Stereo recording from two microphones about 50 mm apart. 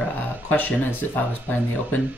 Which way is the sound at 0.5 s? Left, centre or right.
Left.